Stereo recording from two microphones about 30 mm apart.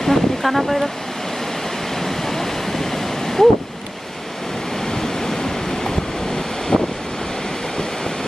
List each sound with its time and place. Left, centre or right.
0.0 s ocean: centre
2.0 s waves: centre
4.9 s waves: centre